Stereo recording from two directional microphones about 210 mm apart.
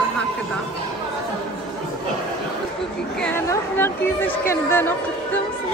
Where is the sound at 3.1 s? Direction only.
10° left (ahead or behind).